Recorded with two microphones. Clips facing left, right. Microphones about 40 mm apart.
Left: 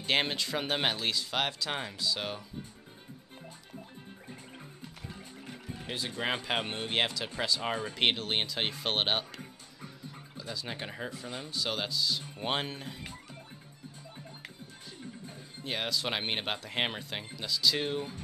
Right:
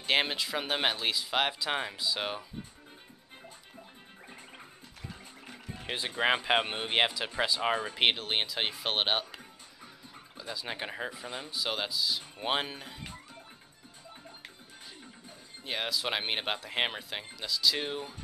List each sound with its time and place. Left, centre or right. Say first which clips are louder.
0.0 s speech: right 1 dB; centre
5.1 s music: left 2 dB; centre
5.9 s speech: right 5 dB; right; by 13.2 s centre
15.2 s speech: even; centre